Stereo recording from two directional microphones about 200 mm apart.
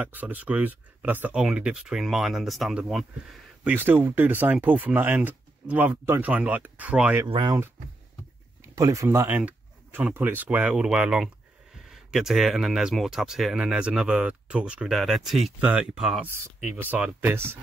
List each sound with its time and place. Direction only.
0.0 s speech: 10° right (ahead or behind)
7.2 s speech: 25° right (ahead or behind)
8.7 s speech: 15° right (ahead or behind)